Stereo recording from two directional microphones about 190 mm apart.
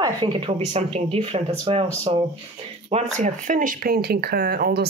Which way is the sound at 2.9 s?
40° right (ahead or behind).